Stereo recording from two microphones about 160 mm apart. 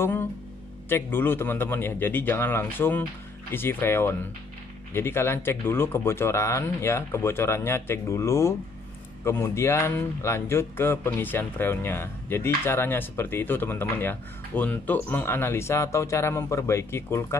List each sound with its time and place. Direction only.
0.0 s speech: 15° left (ahead or behind)